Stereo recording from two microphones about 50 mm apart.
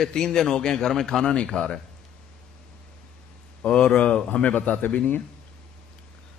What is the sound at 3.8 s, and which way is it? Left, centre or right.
Speech, left.